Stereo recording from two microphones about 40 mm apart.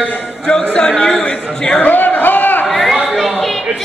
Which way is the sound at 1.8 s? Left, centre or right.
Left.